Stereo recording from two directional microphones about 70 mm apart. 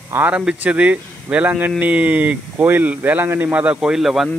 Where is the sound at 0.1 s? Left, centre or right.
Right.